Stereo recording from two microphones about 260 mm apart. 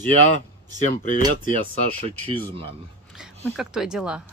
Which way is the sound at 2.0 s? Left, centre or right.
Right.